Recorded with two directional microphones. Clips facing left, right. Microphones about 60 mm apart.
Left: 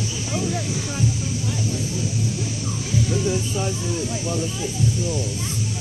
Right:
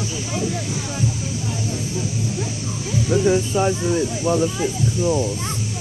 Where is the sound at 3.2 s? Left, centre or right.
Right.